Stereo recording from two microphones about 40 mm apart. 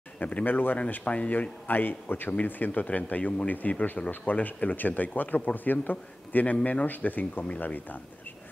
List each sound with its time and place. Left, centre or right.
0.2 s speech: left
0.5 s speech: left
1.0 s speech: left
1.7 s a man's voice: left